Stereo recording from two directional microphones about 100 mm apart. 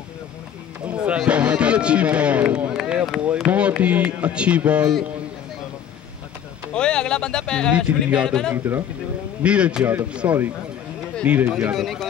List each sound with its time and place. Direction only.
0.8 s speech: 10° right (ahead or behind)
6.7 s speech: 10° left (ahead or behind)
7.7 s speech: 10° right (ahead or behind)
11.7 s speech: centre (ahead or behind)